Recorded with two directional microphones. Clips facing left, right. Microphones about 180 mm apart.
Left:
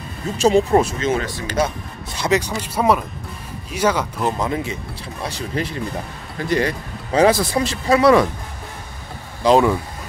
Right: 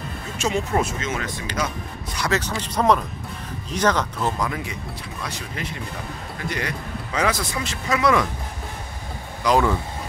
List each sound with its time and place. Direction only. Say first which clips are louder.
0.4 s speech: left 8 dB; 35° left (ahead or behind)
2.1 s speech: left 5 dB; 20° left (ahead or behind)
9.4 s speech: left 5 dB; 20° left (ahead or behind)